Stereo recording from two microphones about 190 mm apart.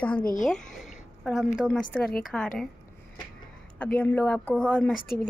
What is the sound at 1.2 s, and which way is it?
A woman's voice, centre (ahead or behind).